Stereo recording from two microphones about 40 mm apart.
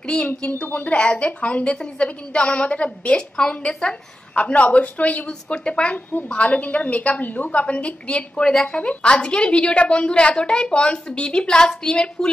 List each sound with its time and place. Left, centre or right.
0.0 s speech: left
0.6 s a woman's voice: left
0.9 s a woman's voice: left
3.2 s a woman's voice: left